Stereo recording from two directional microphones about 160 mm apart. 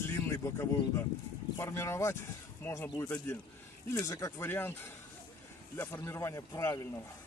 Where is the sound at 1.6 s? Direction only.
20° left (ahead or behind).